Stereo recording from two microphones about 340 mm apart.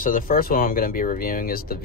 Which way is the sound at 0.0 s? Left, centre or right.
Left.